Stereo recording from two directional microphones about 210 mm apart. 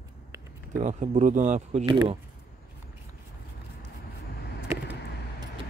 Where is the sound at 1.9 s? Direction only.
20° right (ahead or behind).